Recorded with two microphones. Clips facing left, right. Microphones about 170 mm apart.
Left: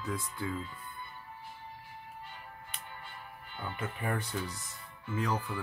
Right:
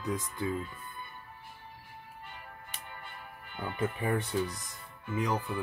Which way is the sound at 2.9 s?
55° right (ahead or behind).